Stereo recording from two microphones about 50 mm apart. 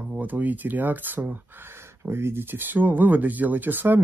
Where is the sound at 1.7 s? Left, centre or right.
Right.